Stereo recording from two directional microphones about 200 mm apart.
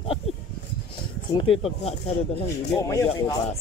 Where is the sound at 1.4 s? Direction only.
30° left (ahead or behind).